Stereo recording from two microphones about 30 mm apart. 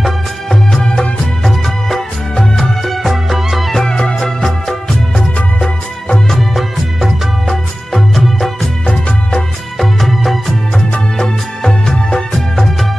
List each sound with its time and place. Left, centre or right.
0.0 s music: centre
1.4 s music of bollywood: centre
2.8 s music: centre
3.8 s music: left
4.5 s music of bollywood: centre
7.4 s music of bollywood: centre
9.8 s music of bollywood: centre
11.1 s music: centre